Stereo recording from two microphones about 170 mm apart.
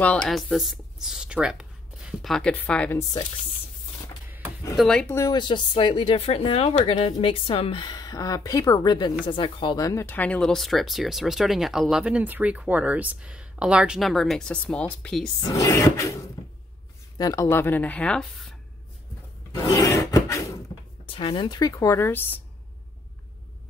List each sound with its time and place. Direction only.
0.0 s speech: 5° left (ahead or behind)
4.7 s speech: 5° left (ahead or behind)
5.1 s speech: 20° left (ahead or behind); by 15.2 s 5° left (ahead or behind)
15.4 s speech: 20° left (ahead or behind)
17.2 s speech: 20° left (ahead or behind); by 18.6 s 5° left (ahead or behind)
19.5 s a sound: 20° left (ahead or behind)
21.1 s speech: 30° left (ahead or behind); by 22.4 s 10° left (ahead or behind)